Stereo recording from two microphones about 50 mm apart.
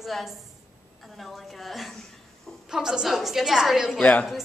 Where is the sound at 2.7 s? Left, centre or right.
Centre.